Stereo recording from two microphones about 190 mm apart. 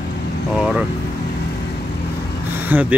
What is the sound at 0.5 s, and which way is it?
Vehicle, 5° right (ahead or behind).